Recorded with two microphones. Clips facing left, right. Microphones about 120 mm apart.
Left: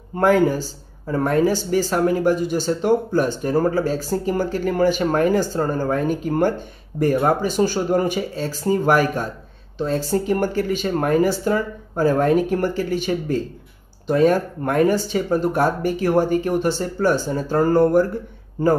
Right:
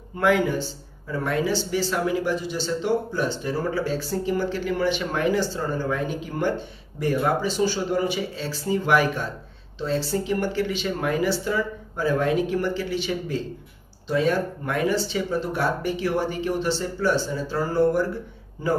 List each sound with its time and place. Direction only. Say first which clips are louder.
0.1 s speech: left 5 dB; 40° left (ahead or behind)